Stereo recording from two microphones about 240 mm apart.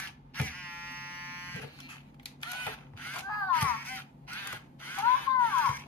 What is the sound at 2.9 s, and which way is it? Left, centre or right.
Quack, centre.